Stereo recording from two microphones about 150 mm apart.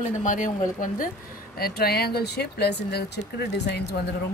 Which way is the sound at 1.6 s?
90° left.